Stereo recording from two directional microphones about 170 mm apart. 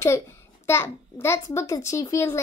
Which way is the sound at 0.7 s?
15° left (ahead or behind).